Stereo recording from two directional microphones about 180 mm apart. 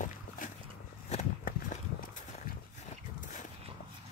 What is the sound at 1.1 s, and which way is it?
Walk, 45° left (ahead or behind).